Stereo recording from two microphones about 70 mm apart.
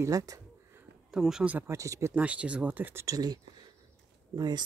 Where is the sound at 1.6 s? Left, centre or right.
Right.